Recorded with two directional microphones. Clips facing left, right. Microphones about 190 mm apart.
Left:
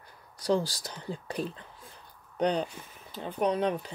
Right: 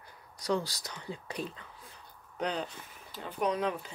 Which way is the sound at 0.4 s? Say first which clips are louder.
Left 4 dB; 30° left (ahead or behind).